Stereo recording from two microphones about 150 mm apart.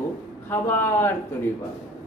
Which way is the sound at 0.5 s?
15° left (ahead or behind).